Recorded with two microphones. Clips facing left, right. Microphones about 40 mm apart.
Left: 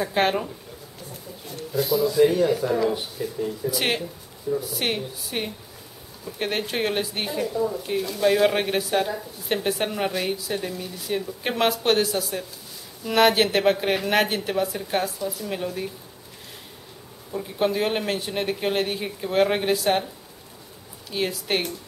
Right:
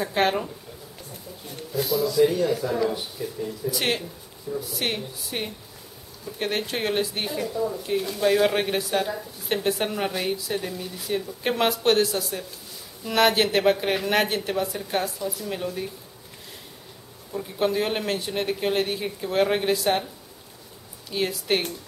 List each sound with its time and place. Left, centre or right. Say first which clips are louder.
0.0 s speech: left 1 dB; centre
1.8 s speech: left 2 dB; centre
2.0 s speech: left 2 dB; centre
17.3 s speech: left 1 dB; centre
21.1 s speech: right 1 dB; centre